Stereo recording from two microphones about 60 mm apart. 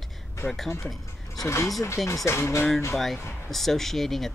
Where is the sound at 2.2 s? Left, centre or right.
Left.